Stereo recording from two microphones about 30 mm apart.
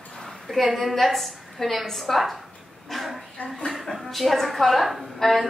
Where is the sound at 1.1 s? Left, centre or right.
Centre.